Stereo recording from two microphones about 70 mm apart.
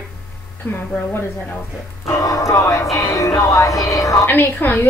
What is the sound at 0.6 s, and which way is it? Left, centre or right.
Speech, left.